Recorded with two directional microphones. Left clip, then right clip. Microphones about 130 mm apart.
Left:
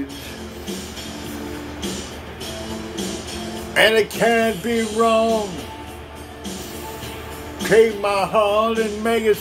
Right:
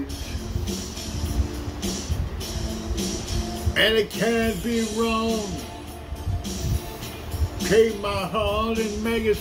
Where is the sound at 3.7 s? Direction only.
40° right (ahead or behind).